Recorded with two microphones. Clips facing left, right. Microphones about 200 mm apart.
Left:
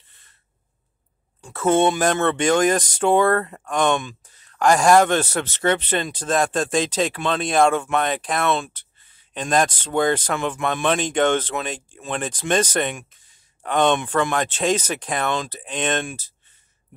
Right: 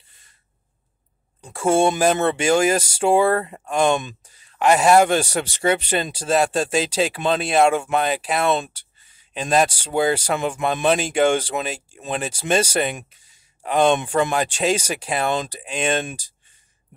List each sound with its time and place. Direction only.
1.4 s speech: 10° right (ahead or behind)
4.2 s speech: 10° right (ahead or behind)
8.4 s speech: 20° right (ahead or behind)
9.3 s speech: 5° right (ahead or behind); by 10.9 s 20° right (ahead or behind)
10.9 s speech: 10° right (ahead or behind)
13.7 s speech: 25° right (ahead or behind)
14.0 s speech: 10° right (ahead or behind)
15.2 s speech: 20° right (ahead or behind)
15.6 s speech: 10° right (ahead or behind)